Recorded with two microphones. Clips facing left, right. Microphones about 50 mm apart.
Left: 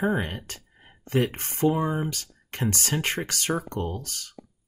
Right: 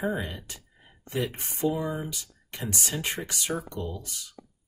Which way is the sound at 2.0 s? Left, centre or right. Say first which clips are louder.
Left 5 dB; left.